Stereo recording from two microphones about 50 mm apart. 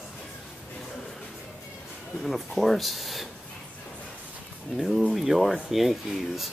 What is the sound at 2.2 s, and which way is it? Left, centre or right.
Speech, centre.